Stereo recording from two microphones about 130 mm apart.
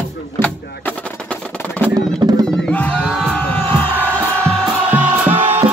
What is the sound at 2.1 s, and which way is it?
Music, 30° right (ahead or behind).